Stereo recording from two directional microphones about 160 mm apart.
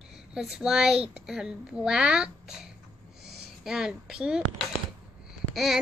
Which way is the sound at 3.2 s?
90° right.